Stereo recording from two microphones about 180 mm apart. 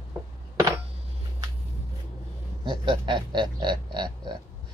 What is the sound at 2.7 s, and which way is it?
Speech, 25° right (ahead or behind).